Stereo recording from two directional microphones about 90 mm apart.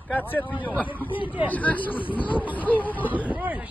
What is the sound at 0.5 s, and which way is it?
Speech, 20° right (ahead or behind).